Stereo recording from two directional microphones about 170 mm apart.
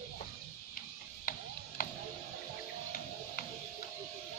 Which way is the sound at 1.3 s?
55° left (ahead or behind).